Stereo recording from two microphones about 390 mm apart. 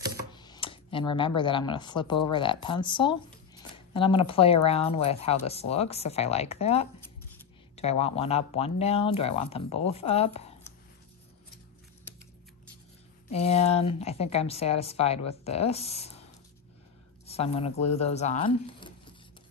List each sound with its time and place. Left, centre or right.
0.3 s speech: centre
13.3 s speech: centre
17.3 s speech: centre